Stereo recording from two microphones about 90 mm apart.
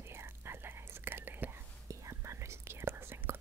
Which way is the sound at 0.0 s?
30° right (ahead or behind).